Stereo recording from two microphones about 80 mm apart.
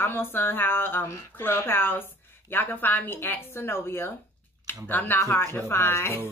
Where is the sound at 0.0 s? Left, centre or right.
Left.